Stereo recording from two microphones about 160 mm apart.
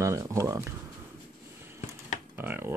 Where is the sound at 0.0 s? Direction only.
20° right (ahead or behind).